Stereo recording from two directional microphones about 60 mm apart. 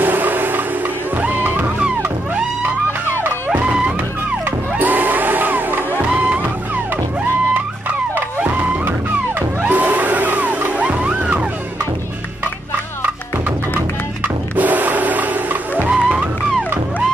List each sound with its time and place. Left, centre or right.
0.0 s a sound: right
1.1 s music: right
3.2 s music: right
3.7 s music: centre
4.5 s music: right
8.2 s music: right
14.2 s music: right